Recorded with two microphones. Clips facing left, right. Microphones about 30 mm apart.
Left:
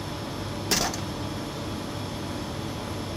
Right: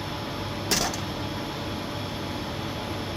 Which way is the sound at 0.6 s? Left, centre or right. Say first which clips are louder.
Even; centre.